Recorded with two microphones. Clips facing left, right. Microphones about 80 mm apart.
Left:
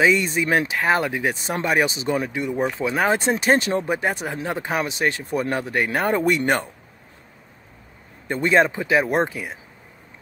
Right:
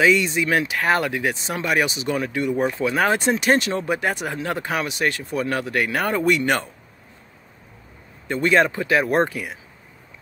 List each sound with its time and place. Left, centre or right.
0.0 s speech: left
0.7 s speech: left
1.2 s speech: left
1.7 s speech: left
5.2 s speech: left
5.5 s speech: left
8.5 s speech: left